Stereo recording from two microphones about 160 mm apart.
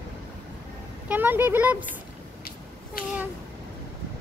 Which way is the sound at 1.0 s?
10° right (ahead or behind).